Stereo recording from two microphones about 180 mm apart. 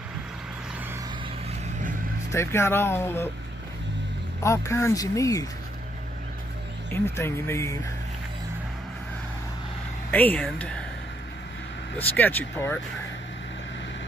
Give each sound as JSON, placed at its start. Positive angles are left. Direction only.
{"t": 2.3, "sound": "speech", "side_deg": 15}
{"t": 4.4, "sound": "speech", "side_deg": 15}
{"t": 6.9, "sound": "speech", "side_deg": 15}
{"t": 10.1, "sound": "speech", "side_deg": 10}
{"t": 12.0, "sound": "speech", "side_deg": 10}